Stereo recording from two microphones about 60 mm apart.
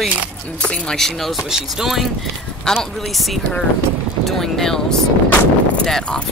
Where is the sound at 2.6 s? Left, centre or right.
Centre.